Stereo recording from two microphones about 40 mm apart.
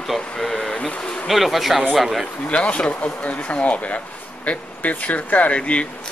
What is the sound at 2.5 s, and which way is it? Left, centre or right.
Speech, left.